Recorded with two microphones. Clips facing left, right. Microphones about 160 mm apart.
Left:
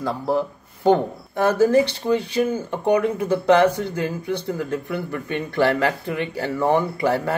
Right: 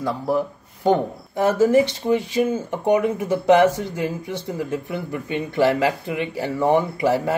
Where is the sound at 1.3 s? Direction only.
20° right (ahead or behind).